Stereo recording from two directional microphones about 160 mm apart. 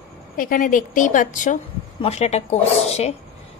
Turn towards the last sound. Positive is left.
turn(degrees=40)  # may be behind; listen again after turning